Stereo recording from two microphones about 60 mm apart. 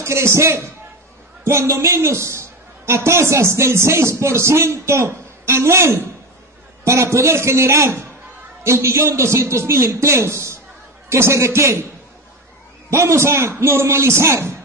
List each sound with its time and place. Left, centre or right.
0.0 s a man's voice: right
12.9 s a man's voice: right